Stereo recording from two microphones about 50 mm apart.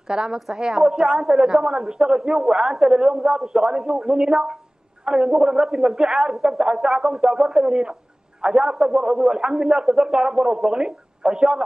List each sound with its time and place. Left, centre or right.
0.1 s a man's voice: centre
1.4 s a man's voice: centre
6.3 s a man's voice: centre
6.6 s a man's voice: centre